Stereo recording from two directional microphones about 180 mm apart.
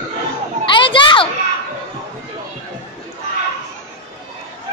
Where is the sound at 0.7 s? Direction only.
30° left (ahead or behind).